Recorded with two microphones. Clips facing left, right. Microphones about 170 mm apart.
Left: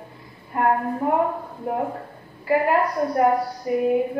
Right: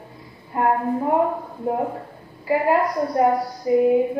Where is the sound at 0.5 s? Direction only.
20° right (ahead or behind).